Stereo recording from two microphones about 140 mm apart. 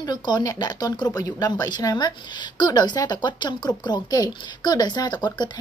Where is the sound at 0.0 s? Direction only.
30° left (ahead or behind).